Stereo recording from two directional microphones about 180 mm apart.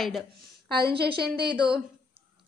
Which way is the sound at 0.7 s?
60° right (ahead or behind).